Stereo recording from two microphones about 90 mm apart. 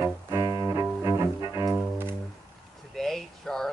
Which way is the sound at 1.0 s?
35° right (ahead or behind).